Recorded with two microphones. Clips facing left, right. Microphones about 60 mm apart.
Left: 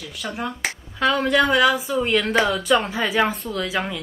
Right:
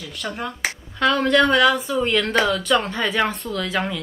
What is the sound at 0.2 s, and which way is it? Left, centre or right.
Speech, centre.